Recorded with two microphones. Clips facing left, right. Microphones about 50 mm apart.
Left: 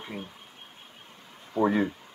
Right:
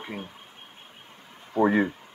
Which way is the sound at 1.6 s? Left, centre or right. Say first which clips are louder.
Right 3 dB; right.